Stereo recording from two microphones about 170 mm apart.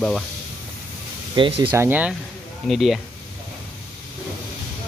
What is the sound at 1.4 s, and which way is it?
Speech, 30° right (ahead or behind).